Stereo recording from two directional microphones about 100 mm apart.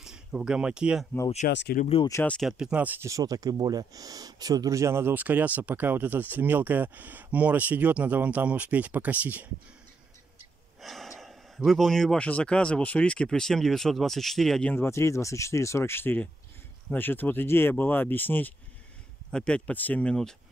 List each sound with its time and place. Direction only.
0.0 s speech: 10° right (ahead or behind)
2.4 s speech: 10° right (ahead or behind)
3.0 s speech: 35° right (ahead or behind); by 9.5 s 15° right (ahead or behind)
10.8 s speech: centre (ahead or behind)
14.7 s speech: 25° left (ahead or behind); by 20.3 s 10° left (ahead or behind)